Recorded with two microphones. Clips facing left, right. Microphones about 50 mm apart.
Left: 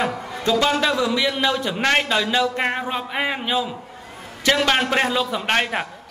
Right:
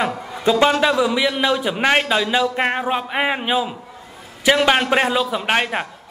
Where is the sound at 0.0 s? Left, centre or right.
Centre.